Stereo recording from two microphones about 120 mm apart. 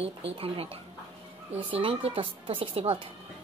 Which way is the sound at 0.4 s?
55° right (ahead or behind).